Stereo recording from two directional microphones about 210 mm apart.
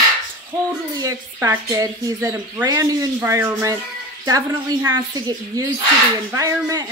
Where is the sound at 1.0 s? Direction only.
15° right (ahead or behind).